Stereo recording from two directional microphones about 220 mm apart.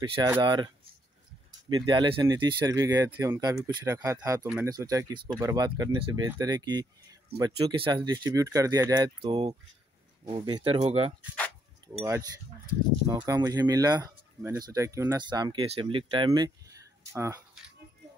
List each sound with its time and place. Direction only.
0.4 s speech: 20° right (ahead or behind)
1.7 s speech: 20° right (ahead or behind)
12.0 s speech: 15° right (ahead or behind)